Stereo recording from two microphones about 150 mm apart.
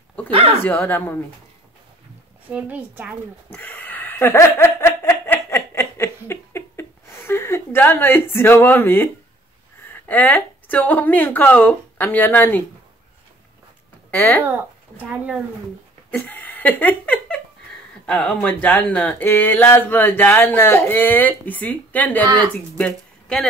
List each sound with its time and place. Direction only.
0.3 s speech: 40° right (ahead or behind)
0.7 s speech: 15° left (ahead or behind)
2.5 s a woman's voice: 10° right (ahead or behind)
3.5 s snicker: 10° left (ahead or behind)
9.9 s a woman's voice: 10° left (ahead or behind)
14.1 s speech: 15° left (ahead or behind)
15.0 s a woman's voice: 10° right (ahead or behind)
16.1 s speech: 10° left (ahead or behind)
22.2 s speech: 30° right (ahead or behind)
22.8 s speech: 5° left (ahead or behind)